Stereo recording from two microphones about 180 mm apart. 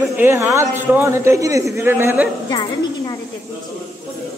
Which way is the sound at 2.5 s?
25° left (ahead or behind).